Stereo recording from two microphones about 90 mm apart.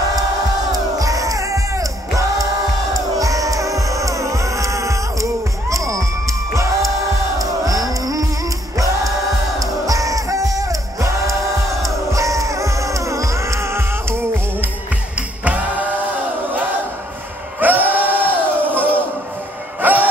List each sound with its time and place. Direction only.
0.7 s music: 40° right (ahead or behind)
15.1 s music: 15° right (ahead or behind)
17.6 s music: 20° right (ahead or behind)